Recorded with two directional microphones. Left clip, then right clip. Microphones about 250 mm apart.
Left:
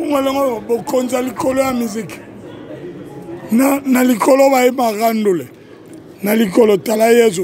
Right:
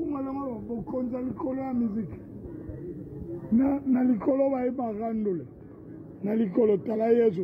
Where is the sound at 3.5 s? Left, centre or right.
Left.